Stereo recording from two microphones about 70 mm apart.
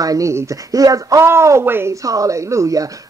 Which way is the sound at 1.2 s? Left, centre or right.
Right.